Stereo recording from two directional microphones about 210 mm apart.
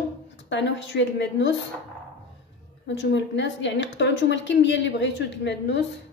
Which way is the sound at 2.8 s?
60° left (ahead or behind).